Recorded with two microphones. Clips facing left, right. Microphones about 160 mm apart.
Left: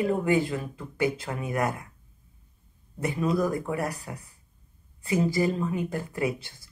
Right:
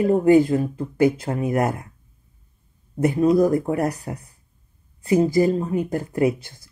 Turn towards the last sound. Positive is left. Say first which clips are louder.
# right 8 dB
turn(degrees=-45)  # may be behind; listen again after turning